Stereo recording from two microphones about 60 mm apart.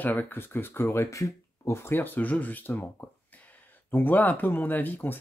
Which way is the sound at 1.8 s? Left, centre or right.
Left.